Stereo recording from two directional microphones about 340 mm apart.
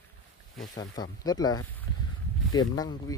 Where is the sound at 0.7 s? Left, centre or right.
Centre.